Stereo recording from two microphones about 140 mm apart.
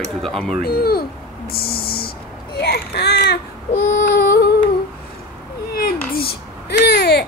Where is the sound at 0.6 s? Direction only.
90° left.